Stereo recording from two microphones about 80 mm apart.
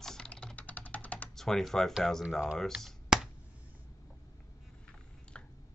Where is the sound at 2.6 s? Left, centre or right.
Centre.